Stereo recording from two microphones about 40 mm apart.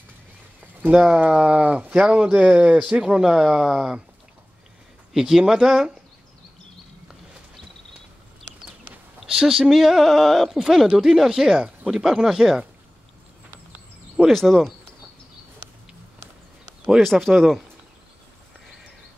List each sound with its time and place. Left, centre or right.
0.9 s speech: right; by 4.0 s centre
5.1 s speech: centre
9.3 s speech: centre
9.7 s a sound: centre
11.1 s speech: centre
14.3 s speech: centre
17.0 s a sound: centre